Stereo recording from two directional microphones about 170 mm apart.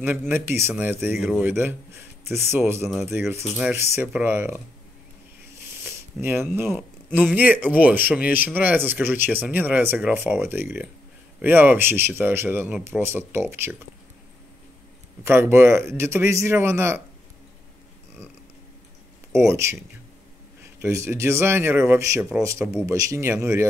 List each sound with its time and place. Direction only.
0.3 s speech: 15° right (ahead or behind)
6.2 s speech: centre (ahead or behind)
15.2 s speech: 15° right (ahead or behind)
19.3 s speech: 15° right (ahead or behind)
20.8 s speech: 15° right (ahead or behind)